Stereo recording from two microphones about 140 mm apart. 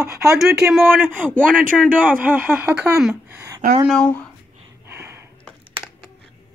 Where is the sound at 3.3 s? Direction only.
20° right (ahead or behind).